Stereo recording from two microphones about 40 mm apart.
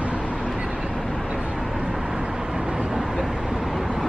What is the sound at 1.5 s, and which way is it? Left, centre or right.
Vehicle, centre.